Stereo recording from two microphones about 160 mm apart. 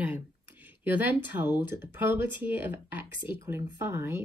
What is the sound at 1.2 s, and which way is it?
Speech, 10° right (ahead or behind).